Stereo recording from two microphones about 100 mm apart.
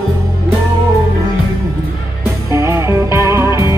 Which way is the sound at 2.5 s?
30° right (ahead or behind).